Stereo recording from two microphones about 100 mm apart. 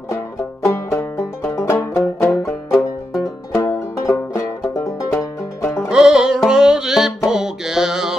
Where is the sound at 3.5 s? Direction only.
35° left (ahead or behind).